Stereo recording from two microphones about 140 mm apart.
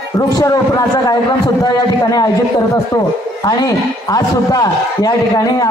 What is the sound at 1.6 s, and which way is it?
Speech, 25° left (ahead or behind).